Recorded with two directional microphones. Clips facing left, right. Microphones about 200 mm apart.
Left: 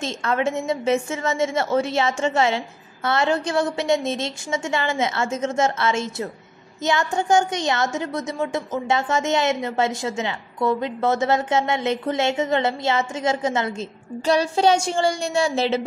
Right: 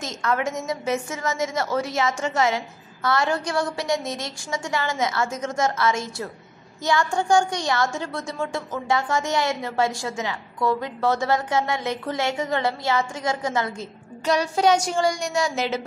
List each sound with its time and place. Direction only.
0.0 s a woman's voice: 25° left (ahead or behind)